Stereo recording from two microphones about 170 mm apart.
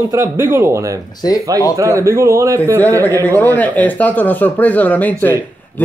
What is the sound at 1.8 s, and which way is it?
Speech, 15° right (ahead or behind).